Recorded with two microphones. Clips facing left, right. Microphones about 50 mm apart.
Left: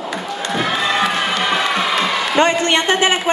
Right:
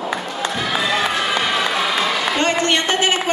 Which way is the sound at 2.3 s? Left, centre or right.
Left.